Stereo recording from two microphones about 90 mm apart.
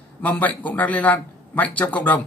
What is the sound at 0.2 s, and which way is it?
A man's voice, 15° left (ahead or behind).